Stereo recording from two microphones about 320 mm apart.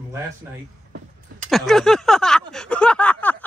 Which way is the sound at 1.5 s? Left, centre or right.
Centre.